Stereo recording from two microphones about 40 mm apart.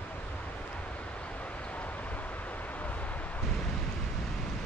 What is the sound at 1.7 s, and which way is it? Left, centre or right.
Vehicle, left.